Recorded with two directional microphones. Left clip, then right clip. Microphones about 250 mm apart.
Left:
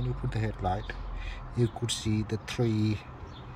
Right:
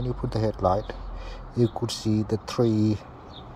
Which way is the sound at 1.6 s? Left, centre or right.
Centre.